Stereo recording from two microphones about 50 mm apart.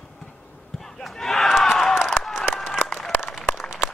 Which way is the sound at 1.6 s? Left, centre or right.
Centre.